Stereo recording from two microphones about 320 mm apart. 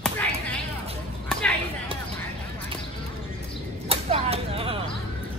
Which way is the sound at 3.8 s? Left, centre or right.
Centre.